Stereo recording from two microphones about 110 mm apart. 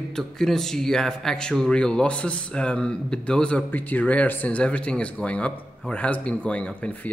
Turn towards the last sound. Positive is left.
turn(degrees=10)  # may be behind; listen again after turning